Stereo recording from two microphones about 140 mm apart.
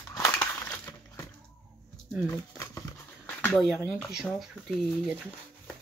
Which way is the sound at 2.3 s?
20° left (ahead or behind).